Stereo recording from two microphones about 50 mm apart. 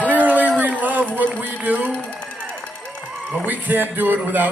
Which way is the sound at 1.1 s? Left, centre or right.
Right.